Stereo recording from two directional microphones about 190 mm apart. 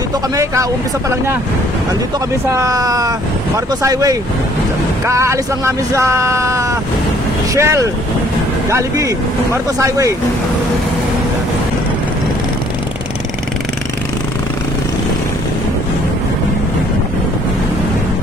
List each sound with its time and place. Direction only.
2.5 s speech: 20° right (ahead or behind)